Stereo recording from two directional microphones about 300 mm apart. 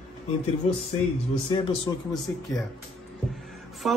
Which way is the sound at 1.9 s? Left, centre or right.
Centre.